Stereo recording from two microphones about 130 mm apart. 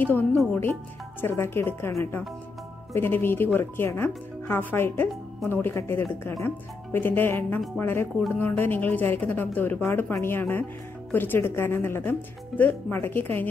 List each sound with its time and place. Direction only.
0.0 s speech: 15° left (ahead or behind)